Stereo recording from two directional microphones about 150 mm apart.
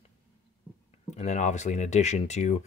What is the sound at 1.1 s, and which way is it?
Speech, 50° left (ahead or behind).